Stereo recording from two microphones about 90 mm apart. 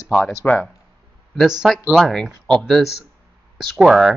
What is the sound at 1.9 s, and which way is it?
Speech, 5° left (ahead or behind).